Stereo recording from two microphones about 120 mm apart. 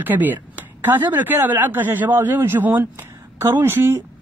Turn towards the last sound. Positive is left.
turn(degrees=-20)  # may be behind; listen again after turning